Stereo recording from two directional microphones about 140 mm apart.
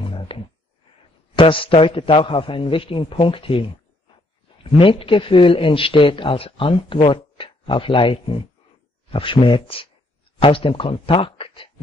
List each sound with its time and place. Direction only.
0.0 s music: 40° left (ahead or behind)
1.3 s speech: 40° left (ahead or behind)